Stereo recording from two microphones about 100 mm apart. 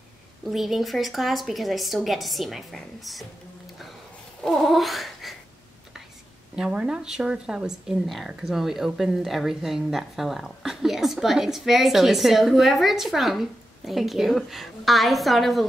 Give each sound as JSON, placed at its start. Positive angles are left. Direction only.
{"t": 0.5, "sound": "speech", "side_deg": 0}
{"t": 4.4, "sound": "a sound", "side_deg": 5}
{"t": 6.5, "sound": "speech", "side_deg": -10}